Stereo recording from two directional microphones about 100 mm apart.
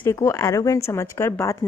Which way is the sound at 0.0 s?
30° left (ahead or behind).